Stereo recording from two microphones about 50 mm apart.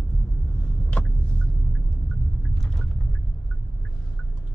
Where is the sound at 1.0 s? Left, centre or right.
Left.